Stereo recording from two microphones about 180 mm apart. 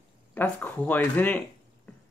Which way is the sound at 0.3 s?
10° left (ahead or behind).